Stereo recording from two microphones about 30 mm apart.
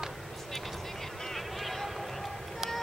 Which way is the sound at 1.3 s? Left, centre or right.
Centre.